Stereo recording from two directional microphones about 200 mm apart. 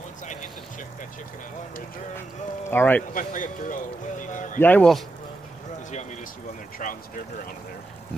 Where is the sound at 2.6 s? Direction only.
10° left (ahead or behind).